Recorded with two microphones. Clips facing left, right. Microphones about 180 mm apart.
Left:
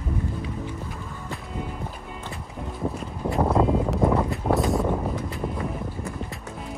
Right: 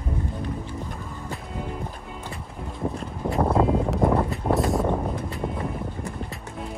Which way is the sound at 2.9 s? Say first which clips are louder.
Even; centre (ahead or behind).